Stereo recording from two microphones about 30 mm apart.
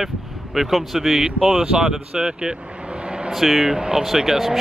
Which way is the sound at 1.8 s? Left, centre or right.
Centre.